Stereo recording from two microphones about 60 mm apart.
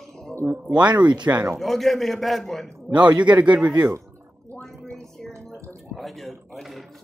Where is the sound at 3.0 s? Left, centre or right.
Right.